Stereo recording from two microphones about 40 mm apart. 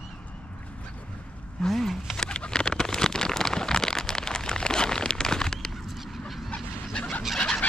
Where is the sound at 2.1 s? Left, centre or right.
Left.